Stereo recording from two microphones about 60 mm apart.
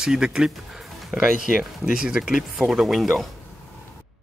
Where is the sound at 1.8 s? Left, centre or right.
Centre.